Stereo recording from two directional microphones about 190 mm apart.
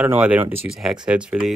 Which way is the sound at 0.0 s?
10° right (ahead or behind).